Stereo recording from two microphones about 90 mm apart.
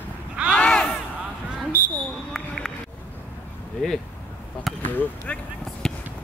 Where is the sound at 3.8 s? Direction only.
5° left (ahead or behind).